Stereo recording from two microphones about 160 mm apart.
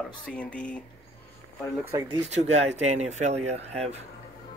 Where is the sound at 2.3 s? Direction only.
40° right (ahead or behind).